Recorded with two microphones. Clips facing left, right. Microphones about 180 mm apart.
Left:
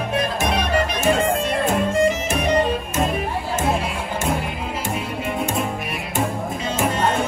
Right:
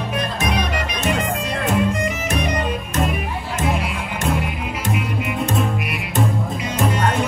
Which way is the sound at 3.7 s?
30° left (ahead or behind).